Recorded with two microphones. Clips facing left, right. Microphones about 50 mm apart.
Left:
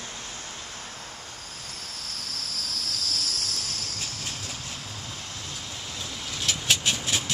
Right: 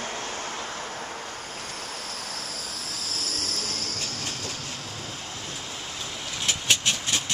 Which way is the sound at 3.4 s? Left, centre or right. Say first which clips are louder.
Right 2 dB; right.